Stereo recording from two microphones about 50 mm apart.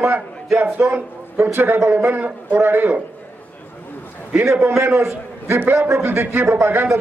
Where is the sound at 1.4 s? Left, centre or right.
Right.